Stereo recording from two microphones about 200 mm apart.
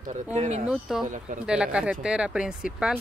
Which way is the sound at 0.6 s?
5° right (ahead or behind).